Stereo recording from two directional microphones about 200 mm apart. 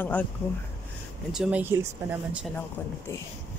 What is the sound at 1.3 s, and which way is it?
Speech, 5° right (ahead or behind).